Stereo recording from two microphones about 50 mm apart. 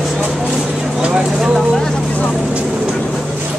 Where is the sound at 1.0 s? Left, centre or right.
Centre.